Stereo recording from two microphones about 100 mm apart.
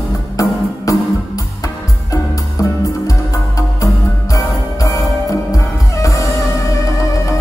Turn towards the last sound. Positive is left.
turn(degrees=35)  # may be behind; listen again after turning